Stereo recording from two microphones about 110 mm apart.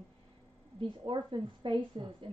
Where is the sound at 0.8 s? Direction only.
50° right (ahead or behind).